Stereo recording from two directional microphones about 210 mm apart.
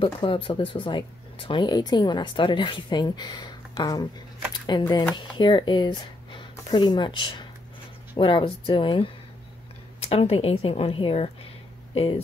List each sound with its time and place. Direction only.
0.0 s speech: 25° left (ahead or behind)